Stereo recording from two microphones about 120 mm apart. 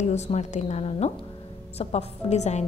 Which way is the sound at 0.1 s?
75° left (ahead or behind).